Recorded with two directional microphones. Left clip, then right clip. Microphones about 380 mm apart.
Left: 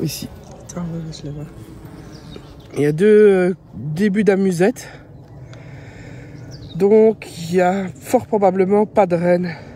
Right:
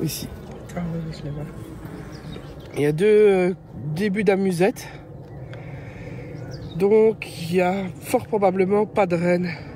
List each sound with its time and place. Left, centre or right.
0.0 s speech: left
2.7 s speech: left
6.8 s speech: left